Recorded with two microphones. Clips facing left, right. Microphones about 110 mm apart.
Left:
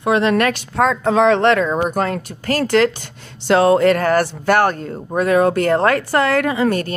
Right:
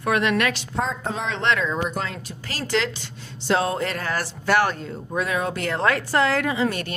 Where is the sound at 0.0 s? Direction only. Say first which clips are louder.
Left 6 dB; 30° left (ahead or behind).